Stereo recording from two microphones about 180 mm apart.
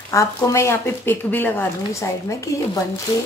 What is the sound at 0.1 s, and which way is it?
Speech, 15° left (ahead or behind).